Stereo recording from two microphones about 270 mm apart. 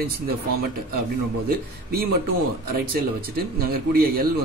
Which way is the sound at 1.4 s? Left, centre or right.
Right.